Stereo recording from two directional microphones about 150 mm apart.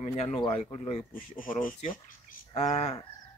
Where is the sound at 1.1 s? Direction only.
65° left (ahead or behind); by 3.0 s 45° left (ahead or behind).